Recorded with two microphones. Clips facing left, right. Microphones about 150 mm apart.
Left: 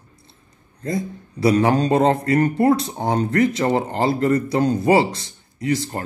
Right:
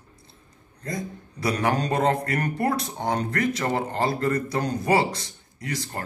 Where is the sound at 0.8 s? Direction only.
25° left (ahead or behind).